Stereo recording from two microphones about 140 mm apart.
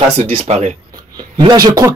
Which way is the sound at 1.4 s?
30° right (ahead or behind).